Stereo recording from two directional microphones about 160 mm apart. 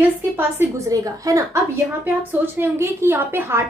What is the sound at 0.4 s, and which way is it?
A woman's voice, 15° right (ahead or behind).